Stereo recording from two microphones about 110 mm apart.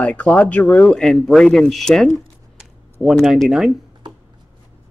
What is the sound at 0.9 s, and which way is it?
Speech, centre (ahead or behind).